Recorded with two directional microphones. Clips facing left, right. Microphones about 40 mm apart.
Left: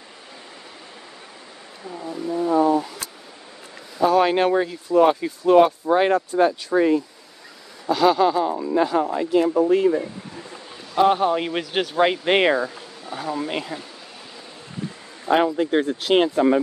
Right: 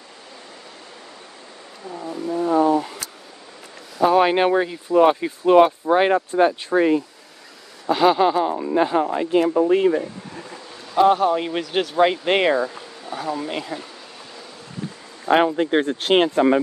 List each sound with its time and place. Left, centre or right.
2.4 s a sound: right
4.0 s speech: right
7.8 s speech: right
11.1 s speech: centre
15.2 s speech: right